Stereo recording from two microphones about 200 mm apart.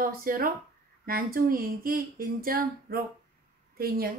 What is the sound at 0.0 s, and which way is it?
A woman's voice, 45° right (ahead or behind).